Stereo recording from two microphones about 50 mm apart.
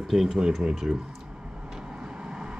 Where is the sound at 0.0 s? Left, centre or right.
Centre.